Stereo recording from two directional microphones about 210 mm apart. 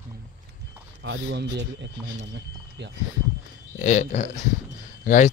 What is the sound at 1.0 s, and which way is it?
Speech, 55° right (ahead or behind).